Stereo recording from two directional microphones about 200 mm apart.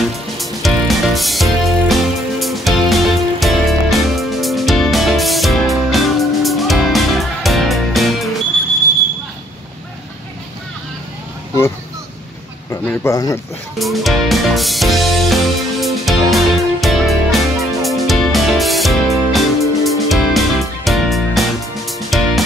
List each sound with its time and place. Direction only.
0.4 s music: centre (ahead or behind)
12.8 s speech: 15° left (ahead or behind)
13.7 s music: centre (ahead or behind)